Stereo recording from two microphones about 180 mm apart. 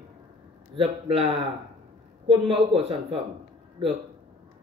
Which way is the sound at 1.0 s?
30° right (ahead or behind).